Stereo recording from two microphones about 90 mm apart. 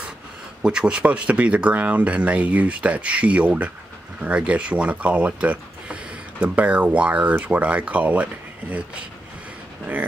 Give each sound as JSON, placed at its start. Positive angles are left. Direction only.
{"t": 0.6, "sound": "speech", "side_deg": -10}